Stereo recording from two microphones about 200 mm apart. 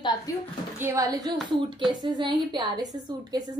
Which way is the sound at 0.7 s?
15° right (ahead or behind).